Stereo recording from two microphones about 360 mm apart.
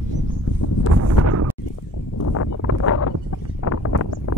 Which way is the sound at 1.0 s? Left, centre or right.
Right.